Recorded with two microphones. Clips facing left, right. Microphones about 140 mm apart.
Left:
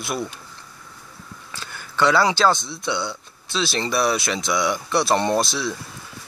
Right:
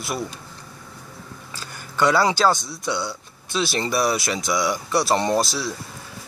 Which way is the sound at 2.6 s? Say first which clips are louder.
Left 1 dB; 40° right (ahead or behind).